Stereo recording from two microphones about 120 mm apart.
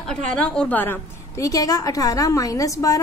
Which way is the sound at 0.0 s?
5° left (ahead or behind).